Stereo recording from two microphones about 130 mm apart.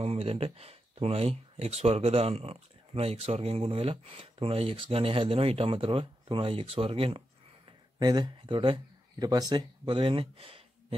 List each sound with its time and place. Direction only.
0.0 s speech: 50° right (ahead or behind)
8.0 s speech: 35° right (ahead or behind)